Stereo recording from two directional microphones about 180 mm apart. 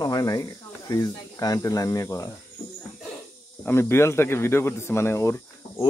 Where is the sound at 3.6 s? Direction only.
15° left (ahead or behind).